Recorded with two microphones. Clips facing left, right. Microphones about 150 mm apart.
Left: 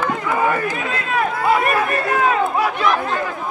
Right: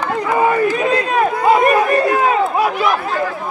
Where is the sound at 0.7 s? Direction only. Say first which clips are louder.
Right 6 dB; 20° right (ahead or behind).